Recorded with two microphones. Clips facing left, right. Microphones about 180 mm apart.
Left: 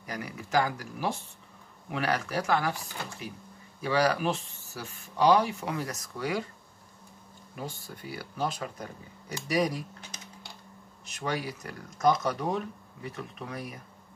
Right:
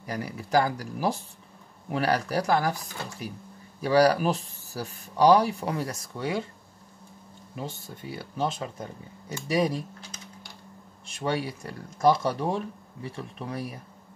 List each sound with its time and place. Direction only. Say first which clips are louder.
0.0 s speech: right 4 dB; 35° right (ahead or behind)
7.5 s speech: right 2 dB; 25° right (ahead or behind)
11.1 s speech: right 4 dB; 30° right (ahead or behind)